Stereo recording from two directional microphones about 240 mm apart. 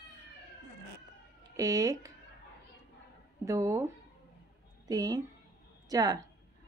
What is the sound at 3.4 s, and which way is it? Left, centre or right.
A woman's voice, centre.